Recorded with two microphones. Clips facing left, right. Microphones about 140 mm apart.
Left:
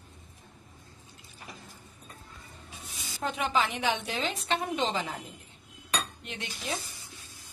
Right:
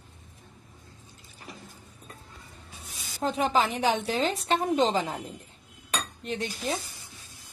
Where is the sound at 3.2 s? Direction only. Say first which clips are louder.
Right 4 dB; 35° right (ahead or behind).